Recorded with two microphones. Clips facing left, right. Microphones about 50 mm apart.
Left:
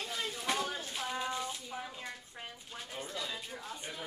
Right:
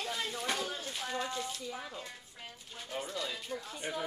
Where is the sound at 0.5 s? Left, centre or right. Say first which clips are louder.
Left 1 dB; left.